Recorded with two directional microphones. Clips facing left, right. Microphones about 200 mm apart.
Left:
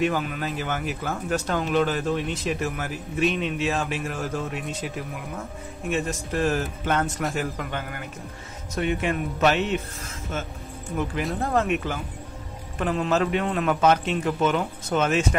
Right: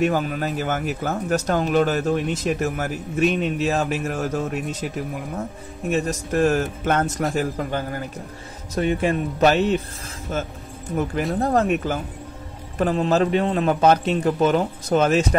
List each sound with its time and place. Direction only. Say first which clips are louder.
0.0 s a man's voice: right 4 dB; 45° right (ahead or behind)
5.9 s a man's voice: right 4 dB; 40° right (ahead or behind)
11.3 s a man's voice: right 4 dB; 35° right (ahead or behind)